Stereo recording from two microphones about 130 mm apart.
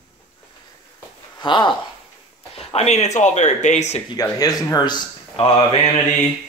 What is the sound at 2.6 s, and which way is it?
Speech, 50° left (ahead or behind).